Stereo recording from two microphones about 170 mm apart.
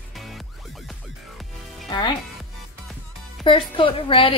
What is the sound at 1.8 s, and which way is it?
Speech, 25° left (ahead or behind).